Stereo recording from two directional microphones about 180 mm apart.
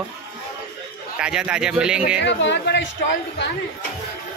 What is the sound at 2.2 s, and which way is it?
A woman's voice, 80° left.